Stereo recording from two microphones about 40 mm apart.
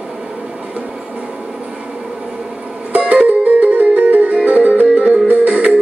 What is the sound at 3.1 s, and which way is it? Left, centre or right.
Music, right.